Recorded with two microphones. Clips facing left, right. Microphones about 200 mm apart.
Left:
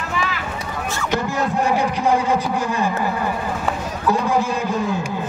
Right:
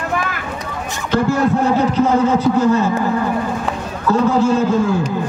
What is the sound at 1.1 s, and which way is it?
Speech, 15° left (ahead or behind).